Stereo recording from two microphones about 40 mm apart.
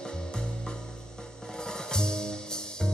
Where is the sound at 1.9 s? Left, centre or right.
Centre.